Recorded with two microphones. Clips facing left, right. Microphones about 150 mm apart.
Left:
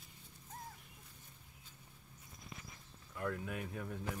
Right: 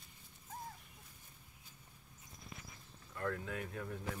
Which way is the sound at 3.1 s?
15° left (ahead or behind).